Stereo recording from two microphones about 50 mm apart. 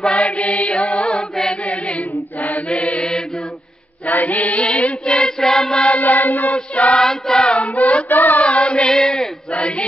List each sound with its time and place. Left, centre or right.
0.0 s music: left
1.5 s chant: left
4.0 s chant: left
5.0 s chant: centre
5.9 s choir: left
7.0 s choir: centre
7.5 s child singing: left
8.5 s singing: left
8.9 s male singing: centre
9.5 s a sound: left